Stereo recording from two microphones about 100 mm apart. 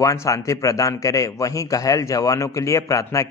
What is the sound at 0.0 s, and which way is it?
A man's voice, 30° left (ahead or behind).